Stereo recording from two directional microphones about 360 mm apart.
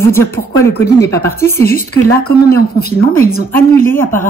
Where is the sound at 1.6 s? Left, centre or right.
Left.